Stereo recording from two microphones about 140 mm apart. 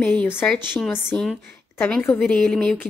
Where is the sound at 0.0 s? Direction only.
10° left (ahead or behind).